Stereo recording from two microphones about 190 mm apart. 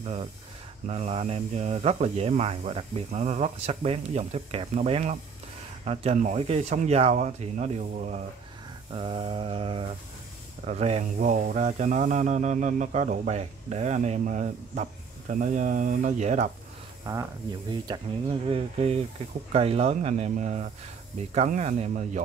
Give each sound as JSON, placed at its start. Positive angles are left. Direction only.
{"t": 0.0, "sound": "speech", "side_deg": -30}
{"t": 17.0, "sound": "speech", "side_deg": -15}